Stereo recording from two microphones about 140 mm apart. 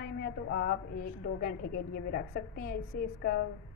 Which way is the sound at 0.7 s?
90° left.